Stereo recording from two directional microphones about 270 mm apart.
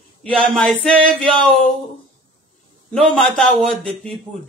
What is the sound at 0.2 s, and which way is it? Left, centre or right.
A man's voice, centre.